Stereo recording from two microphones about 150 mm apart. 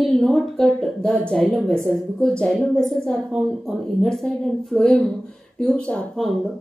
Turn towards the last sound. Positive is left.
turn(degrees=0)  # may be behind; listen again after turning